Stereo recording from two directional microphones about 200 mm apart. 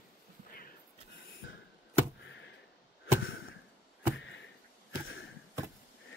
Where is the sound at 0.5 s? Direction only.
45° left (ahead or behind).